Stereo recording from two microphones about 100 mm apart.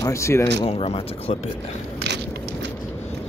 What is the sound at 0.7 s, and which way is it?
Speech, 70° left (ahead or behind).